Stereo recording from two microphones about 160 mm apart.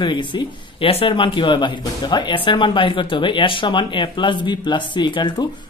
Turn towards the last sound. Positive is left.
turn(degrees=30)  # may be behind; listen again after turning